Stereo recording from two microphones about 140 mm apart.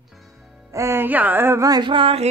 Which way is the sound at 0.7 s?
20° right (ahead or behind).